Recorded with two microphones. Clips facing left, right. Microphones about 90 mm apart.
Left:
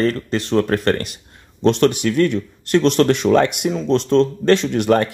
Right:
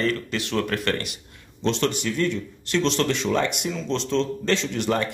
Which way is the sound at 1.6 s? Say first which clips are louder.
Left 8 dB; 55° left (ahead or behind).